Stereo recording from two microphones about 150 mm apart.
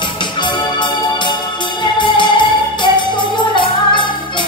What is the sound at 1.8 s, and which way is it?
Music, 30° left (ahead or behind).